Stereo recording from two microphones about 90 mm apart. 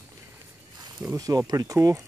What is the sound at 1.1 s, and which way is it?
Speech, 45° right (ahead or behind).